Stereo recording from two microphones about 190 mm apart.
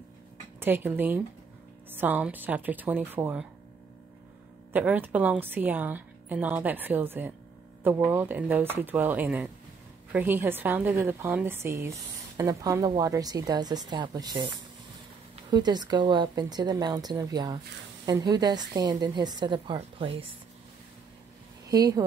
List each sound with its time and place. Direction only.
0.6 s a woman's voice: 10° right (ahead or behind)
4.7 s a woman's voice: 10° right (ahead or behind); by 20.1 s 25° right (ahead or behind)
21.6 s speech: 20° right (ahead or behind)